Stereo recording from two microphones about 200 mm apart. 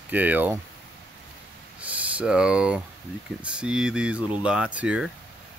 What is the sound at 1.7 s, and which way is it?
Speech, 5° right (ahead or behind).